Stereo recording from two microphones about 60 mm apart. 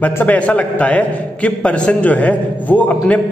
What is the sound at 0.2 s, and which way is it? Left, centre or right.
A man's voice, left.